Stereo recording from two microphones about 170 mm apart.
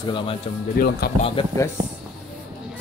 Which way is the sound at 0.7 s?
65° left (ahead or behind).